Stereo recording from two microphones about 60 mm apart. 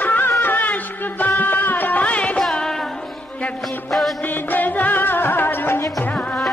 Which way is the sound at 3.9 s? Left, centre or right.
Centre.